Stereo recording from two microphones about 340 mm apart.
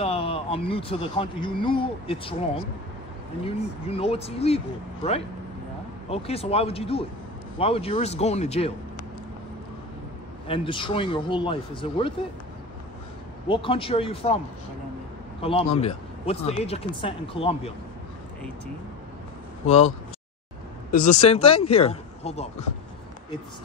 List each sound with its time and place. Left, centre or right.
0.0 s speech: centre
6.0 s speech: centre
10.5 s speech: centre
13.5 s speech: centre
15.4 s speech: centre
20.9 s speech: left